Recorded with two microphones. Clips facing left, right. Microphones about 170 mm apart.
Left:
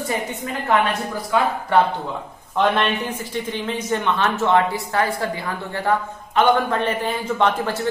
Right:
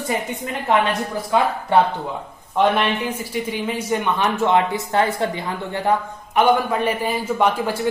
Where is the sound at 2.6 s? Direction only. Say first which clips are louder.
Right 1 dB; 10° right (ahead or behind).